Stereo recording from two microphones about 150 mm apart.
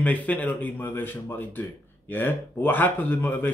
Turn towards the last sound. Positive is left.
turn(degrees=15)  # may be behind; listen again after turning